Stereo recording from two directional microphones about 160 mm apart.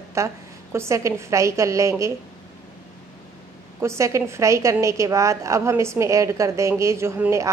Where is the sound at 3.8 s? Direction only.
15° right (ahead or behind).